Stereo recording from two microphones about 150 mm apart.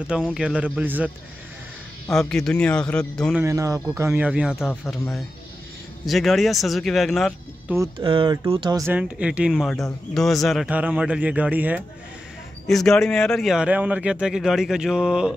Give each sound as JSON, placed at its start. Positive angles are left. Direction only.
{"t": 0.1, "sound": "speech", "side_deg": -5}
{"t": 2.1, "sound": "speech", "side_deg": 5}
{"t": 3.3, "sound": "speech", "side_deg": -20}
{"t": 4.6, "sound": "speech", "side_deg": 15}
{"t": 6.0, "sound": "speech", "side_deg": 0}
{"t": 8.0, "sound": "speech", "side_deg": -35}
{"t": 8.7, "sound": "speech", "side_deg": -15}
{"t": 12.6, "sound": "speech", "side_deg": 5}